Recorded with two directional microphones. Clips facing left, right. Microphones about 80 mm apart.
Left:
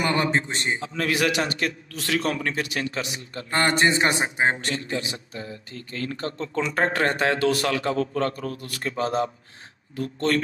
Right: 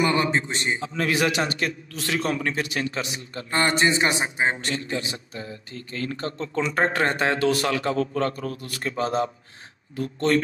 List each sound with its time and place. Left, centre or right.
0.0 s a man's voice: left
0.7 s speech: right
3.4 s a man's voice: left
5.9 s speech: right